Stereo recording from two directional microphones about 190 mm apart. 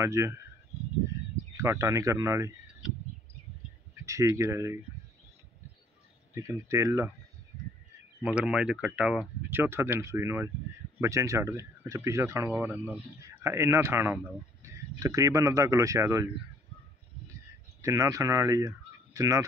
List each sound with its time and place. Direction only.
0.0 s speech: 15° right (ahead or behind)
1.6 s speech: 15° right (ahead or behind)
4.0 s speech: 15° right (ahead or behind)
6.3 s speech: 15° right (ahead or behind)
8.2 s speech: 5° right (ahead or behind)
17.8 s speech: 15° right (ahead or behind)